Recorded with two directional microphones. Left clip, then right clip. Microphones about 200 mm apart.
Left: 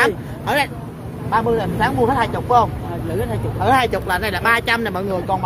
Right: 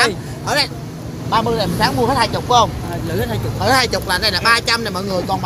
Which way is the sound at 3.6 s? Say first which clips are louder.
Right 1 dB; 30° left (ahead or behind).